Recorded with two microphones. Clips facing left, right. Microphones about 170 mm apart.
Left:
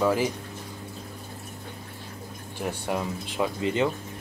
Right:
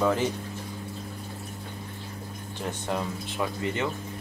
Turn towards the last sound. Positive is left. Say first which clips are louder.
# left 4 dB
turn(degrees=20)  # may be behind; listen again after turning